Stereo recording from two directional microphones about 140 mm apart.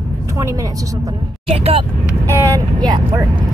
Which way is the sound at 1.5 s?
45° right (ahead or behind).